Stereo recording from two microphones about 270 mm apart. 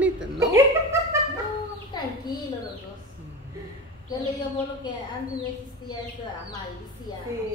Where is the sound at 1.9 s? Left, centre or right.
Centre.